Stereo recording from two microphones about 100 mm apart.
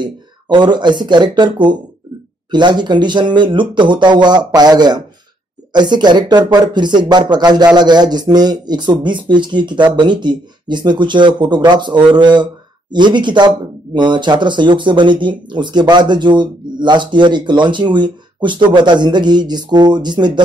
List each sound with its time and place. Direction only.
0.0 s speech: 50° right (ahead or behind)